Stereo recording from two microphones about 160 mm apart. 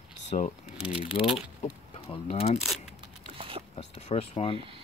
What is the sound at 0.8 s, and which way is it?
Speech, 35° left (ahead or behind).